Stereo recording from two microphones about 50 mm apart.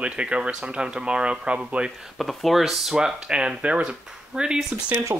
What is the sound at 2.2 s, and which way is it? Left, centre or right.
Speech, centre.